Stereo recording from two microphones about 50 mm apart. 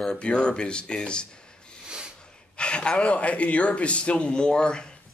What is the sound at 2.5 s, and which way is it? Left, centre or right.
Speech, left.